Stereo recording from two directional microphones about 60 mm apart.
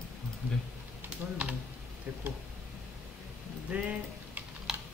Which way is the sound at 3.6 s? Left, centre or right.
Right.